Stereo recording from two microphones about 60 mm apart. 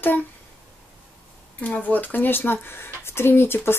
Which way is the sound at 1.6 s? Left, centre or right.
Left.